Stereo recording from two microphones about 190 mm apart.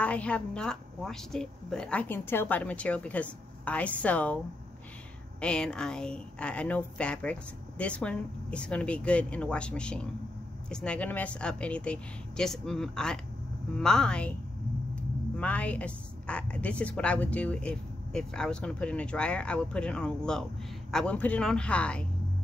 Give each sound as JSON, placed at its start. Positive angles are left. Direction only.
{"t": 0.0, "sound": "a woman's voice", "side_deg": 5}
{"t": 5.4, "sound": "a woman's voice", "side_deg": 5}
{"t": 15.3, "sound": "a woman's voice", "side_deg": 5}